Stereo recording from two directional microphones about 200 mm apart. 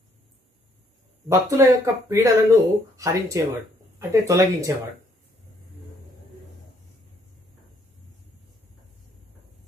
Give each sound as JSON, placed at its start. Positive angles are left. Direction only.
{"t": 1.3, "sound": "speech", "side_deg": -15}